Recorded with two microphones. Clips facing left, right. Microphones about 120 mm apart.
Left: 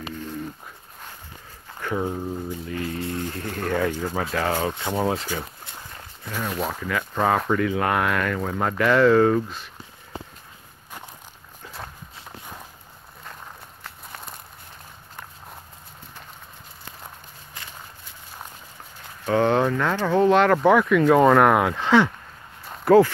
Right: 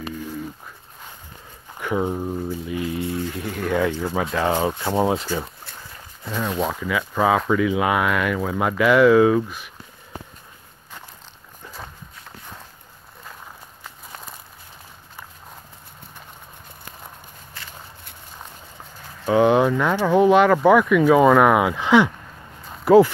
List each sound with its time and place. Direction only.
1.8 s speech: 15° right (ahead or behind)
6.3 s speech: centre (ahead or behind)
17.6 s walk: 20° left (ahead or behind)
19.2 s speech: 10° right (ahead or behind)